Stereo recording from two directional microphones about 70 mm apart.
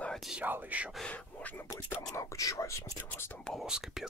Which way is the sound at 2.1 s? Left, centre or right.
Left.